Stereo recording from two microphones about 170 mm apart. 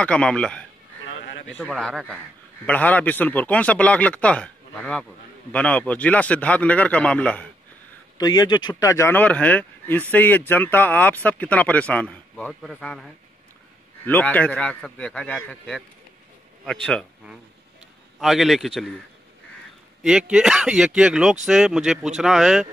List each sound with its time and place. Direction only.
0.0 s speech: 5° left (ahead or behind)
8.2 s speech: 25° left (ahead or behind); by 17.0 s 5° left (ahead or behind)
18.2 s speech: centre (ahead or behind)
20.0 s speech: 5° right (ahead or behind)